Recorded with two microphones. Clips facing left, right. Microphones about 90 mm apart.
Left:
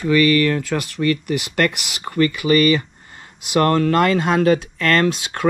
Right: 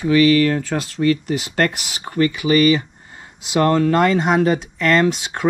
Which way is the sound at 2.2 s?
20° right (ahead or behind).